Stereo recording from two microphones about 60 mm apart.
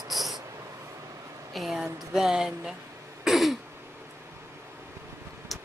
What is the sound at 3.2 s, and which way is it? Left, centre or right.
Throat clearing, centre.